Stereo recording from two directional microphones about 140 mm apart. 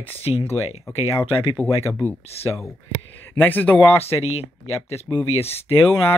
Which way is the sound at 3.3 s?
15° left (ahead or behind).